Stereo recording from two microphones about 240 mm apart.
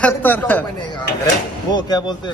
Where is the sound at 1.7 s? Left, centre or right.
Centre.